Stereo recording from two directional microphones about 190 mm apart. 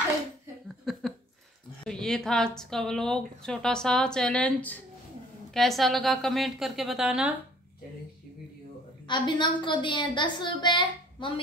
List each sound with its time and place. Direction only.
0.7 s a sound: centre (ahead or behind)
1.9 s speech: 5° left (ahead or behind)
9.0 s a woman's voice: 25° left (ahead or behind)